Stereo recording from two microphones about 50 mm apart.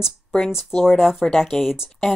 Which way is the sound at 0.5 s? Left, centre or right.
Centre.